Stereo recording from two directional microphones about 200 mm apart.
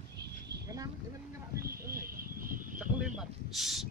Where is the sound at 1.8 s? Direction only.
45° right (ahead or behind).